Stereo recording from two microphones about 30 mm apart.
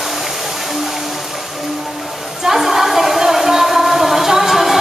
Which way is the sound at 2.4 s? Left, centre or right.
Centre.